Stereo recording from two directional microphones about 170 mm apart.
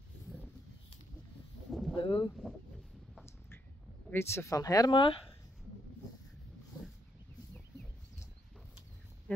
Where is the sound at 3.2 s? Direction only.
15° left (ahead or behind).